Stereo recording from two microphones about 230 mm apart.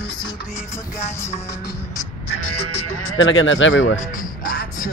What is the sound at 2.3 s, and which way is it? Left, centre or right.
Music, left.